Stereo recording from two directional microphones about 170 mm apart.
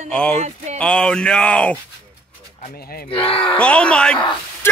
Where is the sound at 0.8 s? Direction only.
5° left (ahead or behind).